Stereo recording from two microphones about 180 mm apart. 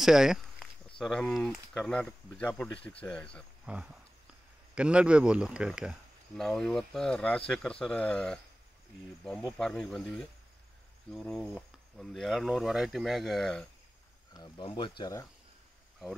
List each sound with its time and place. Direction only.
0.0 s speech: 5° right (ahead or behind)
3.6 s speech: 5° right (ahead or behind)
14.3 s speech: 25° left (ahead or behind)